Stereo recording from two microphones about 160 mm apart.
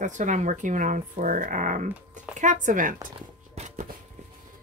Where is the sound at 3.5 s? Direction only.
45° right (ahead or behind).